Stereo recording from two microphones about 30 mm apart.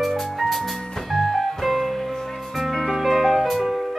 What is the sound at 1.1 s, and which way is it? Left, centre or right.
Music, centre.